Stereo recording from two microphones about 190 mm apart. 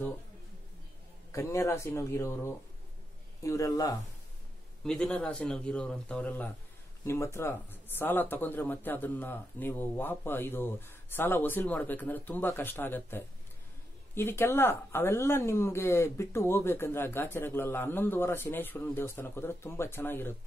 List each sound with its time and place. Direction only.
1.3 s a woman's voice: 15° left (ahead or behind)
4.8 s a woman's voice: 5° left (ahead or behind)